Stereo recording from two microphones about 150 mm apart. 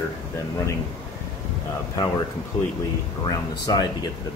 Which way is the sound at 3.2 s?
25° left (ahead or behind).